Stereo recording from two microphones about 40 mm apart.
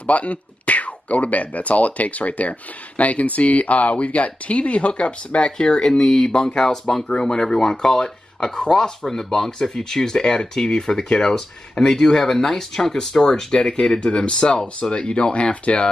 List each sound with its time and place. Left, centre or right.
0.0 s speech: left